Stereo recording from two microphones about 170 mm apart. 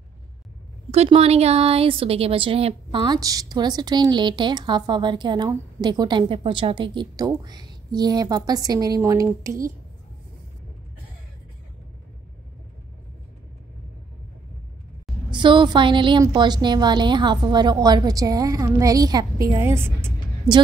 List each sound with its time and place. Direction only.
0.9 s a woman's voice: 40° right (ahead or behind); by 9.6 s 20° right (ahead or behind)
15.3 s a woman's voice: 25° right (ahead or behind)